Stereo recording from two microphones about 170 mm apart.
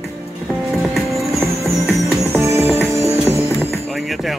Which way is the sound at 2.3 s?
15° right (ahead or behind).